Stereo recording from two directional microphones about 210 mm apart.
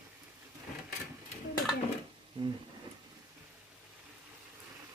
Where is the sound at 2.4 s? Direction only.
25° right (ahead or behind).